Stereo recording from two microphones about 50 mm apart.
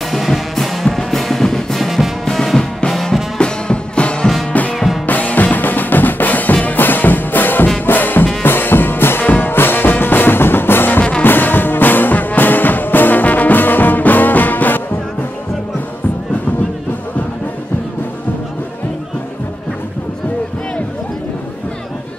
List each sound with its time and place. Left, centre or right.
0.1 s music: centre
1.8 s music: centre
2.2 s music: centre
3.3 s music: centre
5.0 s drum: left
7.8 s music: left